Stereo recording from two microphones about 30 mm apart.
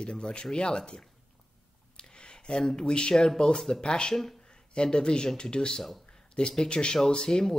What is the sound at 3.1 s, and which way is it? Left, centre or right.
Speech, centre.